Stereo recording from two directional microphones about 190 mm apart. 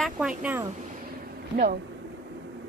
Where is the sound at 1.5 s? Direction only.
50° right (ahead or behind).